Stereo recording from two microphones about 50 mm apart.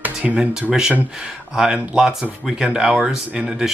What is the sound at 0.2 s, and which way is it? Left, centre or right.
Speech, right.